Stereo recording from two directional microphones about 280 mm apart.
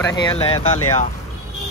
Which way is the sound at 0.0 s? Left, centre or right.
Centre.